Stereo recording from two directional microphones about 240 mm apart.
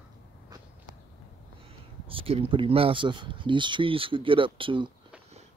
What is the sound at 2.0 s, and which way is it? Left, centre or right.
Speech, right.